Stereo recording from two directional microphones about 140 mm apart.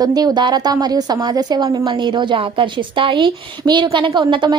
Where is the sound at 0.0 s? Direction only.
30° right (ahead or behind).